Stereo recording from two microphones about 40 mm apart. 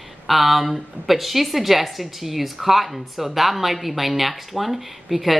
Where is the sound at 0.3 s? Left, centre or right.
Centre.